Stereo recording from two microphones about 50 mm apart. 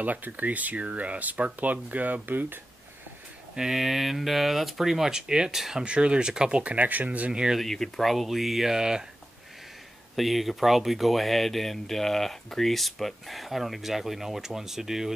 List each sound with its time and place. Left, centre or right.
0.0 s speech: right
3.5 s speech: centre
5.9 s speech: right
7.5 s speech: centre
10.1 s speech: centre